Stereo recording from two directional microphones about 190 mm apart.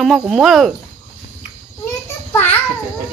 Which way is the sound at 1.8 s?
10° left (ahead or behind).